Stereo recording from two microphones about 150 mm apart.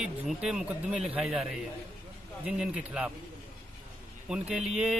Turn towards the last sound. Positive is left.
turn(degrees=-5)  # may be behind; listen again after turning